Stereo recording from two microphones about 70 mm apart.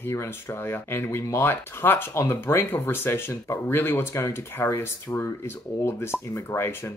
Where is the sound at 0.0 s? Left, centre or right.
Left.